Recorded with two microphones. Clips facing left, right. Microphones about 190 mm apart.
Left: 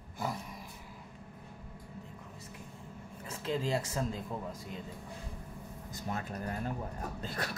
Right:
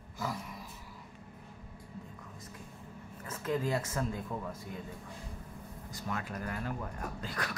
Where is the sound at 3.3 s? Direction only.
30° left (ahead or behind).